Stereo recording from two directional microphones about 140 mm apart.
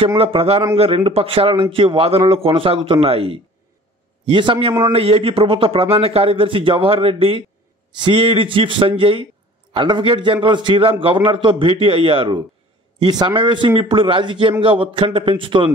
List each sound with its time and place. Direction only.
0.2 s a man's voice: 45° right (ahead or behind)